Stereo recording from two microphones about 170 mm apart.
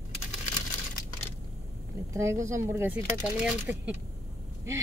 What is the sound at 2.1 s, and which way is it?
Speech, 15° right (ahead or behind).